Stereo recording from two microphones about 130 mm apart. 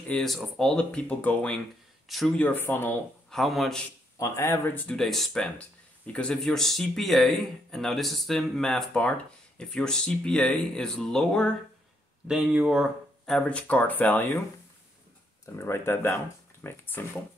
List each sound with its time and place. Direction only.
0.1 s speech: 5° left (ahead or behind)
3.3 s speech: centre (ahead or behind)
4.2 s speech: 20° left (ahead or behind); by 11.5 s 5° left (ahead or behind)
12.3 s speech: 5° right (ahead or behind); by 14.4 s 15° left (ahead or behind)
15.4 s speech: 20° left (ahead or behind)